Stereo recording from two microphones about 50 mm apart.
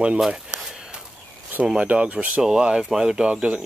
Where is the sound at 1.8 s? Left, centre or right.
Right.